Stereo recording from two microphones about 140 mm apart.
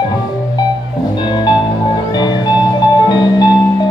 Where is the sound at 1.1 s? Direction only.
30° left (ahead or behind).